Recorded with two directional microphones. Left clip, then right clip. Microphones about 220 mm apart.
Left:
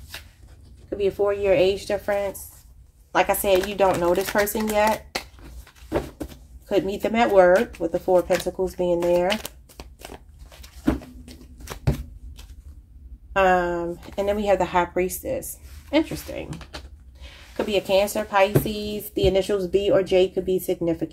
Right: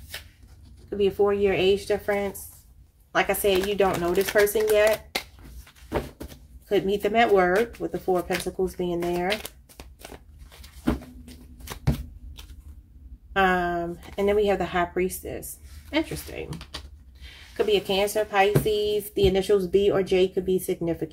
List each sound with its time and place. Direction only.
0.8 s a woman's voice: 20° left (ahead or behind)
3.1 s speech: 30° left (ahead or behind)
5.9 s a sound: 10° left (ahead or behind)
6.7 s a woman's voice: 30° left (ahead or behind)
8.2 s speech: 10° left (ahead or behind)
8.7 s a woman's voice: 25° left (ahead or behind)
9.3 s crumpling: 10° left (ahead or behind)
13.4 s a sound: 30° left (ahead or behind)
15.9 s a woman's voice: 25° left (ahead or behind)
17.6 s a woman's voice: 30° left (ahead or behind)